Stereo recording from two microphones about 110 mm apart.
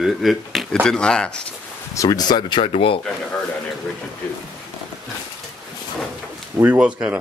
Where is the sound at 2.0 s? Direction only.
35° left (ahead or behind).